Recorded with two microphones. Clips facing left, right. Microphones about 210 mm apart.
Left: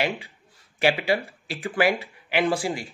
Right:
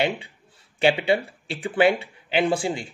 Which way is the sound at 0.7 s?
30° right (ahead or behind).